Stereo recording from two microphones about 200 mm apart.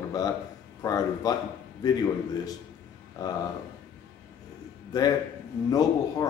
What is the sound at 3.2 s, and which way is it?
Speech, 20° left (ahead or behind).